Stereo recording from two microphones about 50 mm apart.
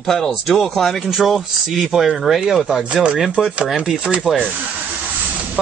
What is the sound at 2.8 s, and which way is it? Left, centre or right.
Speech, right.